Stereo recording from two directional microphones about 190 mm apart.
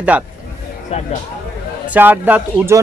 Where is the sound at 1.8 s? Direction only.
10° right (ahead or behind).